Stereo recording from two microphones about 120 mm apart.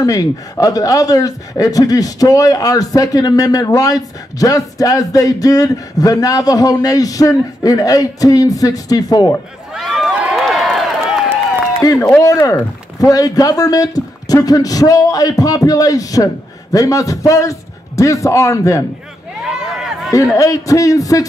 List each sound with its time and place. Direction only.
0.0 s speech: 30° left (ahead or behind)
9.8 s crowd: centre (ahead or behind)
10.4 s run: centre (ahead or behind)
11.8 s speech: 30° left (ahead or behind)
19.5 s a sound: 5° right (ahead or behind)
20.3 s speech: 25° left (ahead or behind)